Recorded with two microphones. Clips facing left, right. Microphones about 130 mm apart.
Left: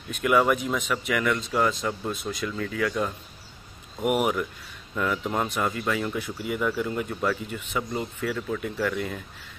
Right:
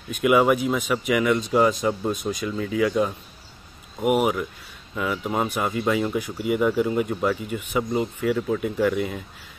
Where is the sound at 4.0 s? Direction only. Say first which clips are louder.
Right 3 dB; centre (ahead or behind).